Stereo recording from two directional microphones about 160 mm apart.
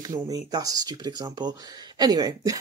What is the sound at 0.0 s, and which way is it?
Speech, 25° right (ahead or behind).